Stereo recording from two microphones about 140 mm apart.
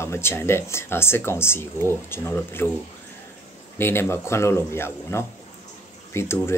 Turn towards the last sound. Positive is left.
turn(degrees=20)  # may be behind; listen again after turning